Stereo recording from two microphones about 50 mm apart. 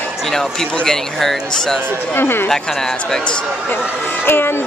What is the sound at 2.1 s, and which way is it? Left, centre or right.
Speech, left.